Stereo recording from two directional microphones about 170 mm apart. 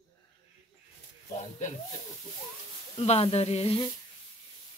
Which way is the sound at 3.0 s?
35° left (ahead or behind).